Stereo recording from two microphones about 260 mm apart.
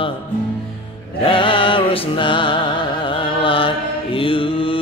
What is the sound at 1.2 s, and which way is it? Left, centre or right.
Music, centre.